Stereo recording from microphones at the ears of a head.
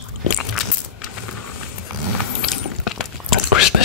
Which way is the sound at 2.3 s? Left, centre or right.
Left.